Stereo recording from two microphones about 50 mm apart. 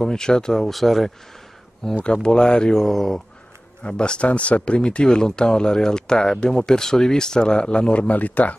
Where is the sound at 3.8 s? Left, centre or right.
Left.